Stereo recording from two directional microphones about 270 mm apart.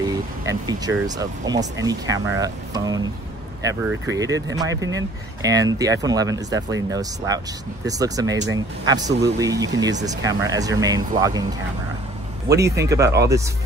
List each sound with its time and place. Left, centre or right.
0.0 s speech: centre
12.4 s speech: centre